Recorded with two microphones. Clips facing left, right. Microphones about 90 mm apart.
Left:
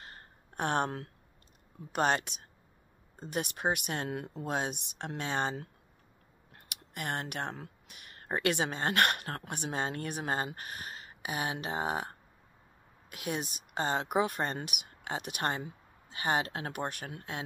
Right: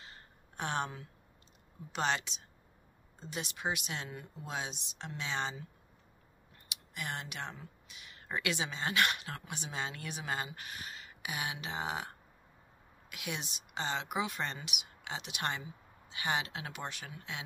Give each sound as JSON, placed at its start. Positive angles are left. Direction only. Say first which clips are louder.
{"t": 0.0, "sound": "a sound", "louder": "left 3 dB", "side_deg": 50}
{"t": 1.9, "sound": "speech", "louder": "left 5 dB", "side_deg": 50}
{"t": 6.5, "sound": "speech", "louder": "left 3 dB", "side_deg": 65}